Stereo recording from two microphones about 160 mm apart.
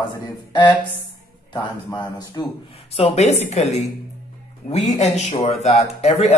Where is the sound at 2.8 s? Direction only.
40° left (ahead or behind).